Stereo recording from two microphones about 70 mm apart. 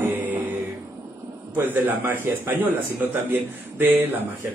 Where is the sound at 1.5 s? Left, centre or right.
Right.